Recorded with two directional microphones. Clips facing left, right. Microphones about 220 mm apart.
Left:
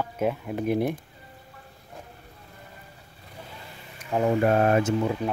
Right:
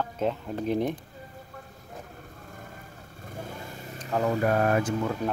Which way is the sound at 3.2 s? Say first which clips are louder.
Right 6 dB; 50° right (ahead or behind).